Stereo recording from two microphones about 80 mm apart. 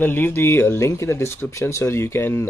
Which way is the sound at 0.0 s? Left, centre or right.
Left.